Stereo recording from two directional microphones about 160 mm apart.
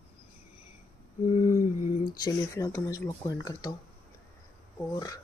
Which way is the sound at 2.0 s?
25° left (ahead or behind).